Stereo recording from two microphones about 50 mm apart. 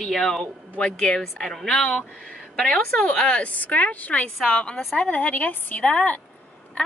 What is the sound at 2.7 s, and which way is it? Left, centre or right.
Speech, left.